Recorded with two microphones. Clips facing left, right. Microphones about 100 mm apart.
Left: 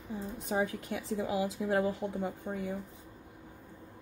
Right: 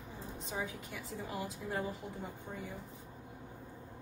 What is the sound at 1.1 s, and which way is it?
A woman's voice, 90° left.